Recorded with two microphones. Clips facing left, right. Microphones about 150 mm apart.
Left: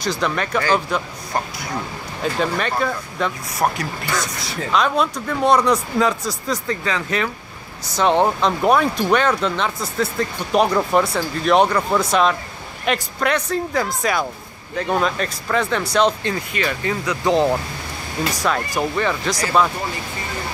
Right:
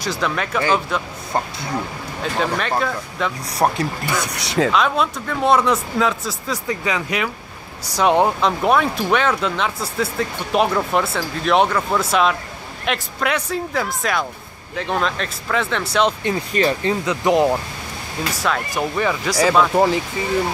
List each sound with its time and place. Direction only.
0.0 s speech: 5° right (ahead or behind)
2.4 s speech: centre (ahead or behind)
3.5 s speech: 35° right (ahead or behind)
4.3 s speech: 80° right
4.7 s speech: centre (ahead or behind)
6.7 s speech: 15° right (ahead or behind)
16.5 s speech: 30° right (ahead or behind)
18.2 s speech: centre (ahead or behind)